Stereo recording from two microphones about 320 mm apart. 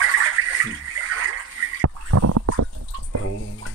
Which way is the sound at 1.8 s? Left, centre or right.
Right.